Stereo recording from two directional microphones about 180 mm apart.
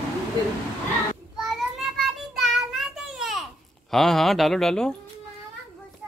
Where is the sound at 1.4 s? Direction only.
Centre (ahead or behind).